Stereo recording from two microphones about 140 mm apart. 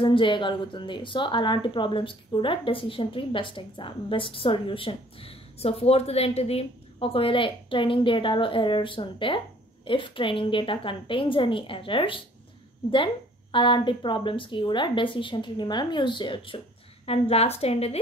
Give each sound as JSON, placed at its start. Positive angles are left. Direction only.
{"t": 0.0, "sound": "speech", "side_deg": 35}